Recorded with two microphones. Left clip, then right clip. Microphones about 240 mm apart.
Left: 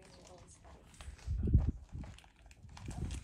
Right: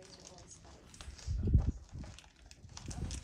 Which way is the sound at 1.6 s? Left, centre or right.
Left.